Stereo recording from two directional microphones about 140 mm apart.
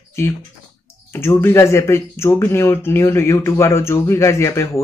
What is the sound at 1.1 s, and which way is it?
Speech, 15° left (ahead or behind).